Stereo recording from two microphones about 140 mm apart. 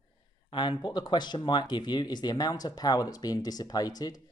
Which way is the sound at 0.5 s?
35° left (ahead or behind).